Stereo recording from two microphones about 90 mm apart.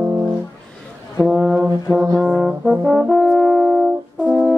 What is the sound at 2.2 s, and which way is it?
Brass instrument, 5° right (ahead or behind).